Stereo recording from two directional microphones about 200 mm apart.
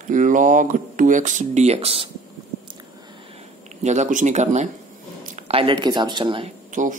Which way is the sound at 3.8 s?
35° right (ahead or behind).